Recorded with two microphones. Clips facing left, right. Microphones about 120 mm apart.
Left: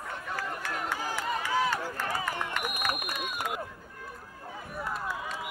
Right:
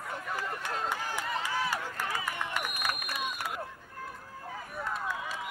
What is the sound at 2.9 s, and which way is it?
Run, 45° left (ahead or behind).